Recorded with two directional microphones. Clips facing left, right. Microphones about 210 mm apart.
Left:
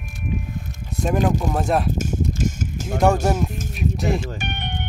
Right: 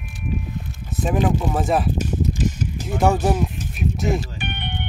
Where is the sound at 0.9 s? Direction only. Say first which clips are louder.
Even; centre (ahead or behind).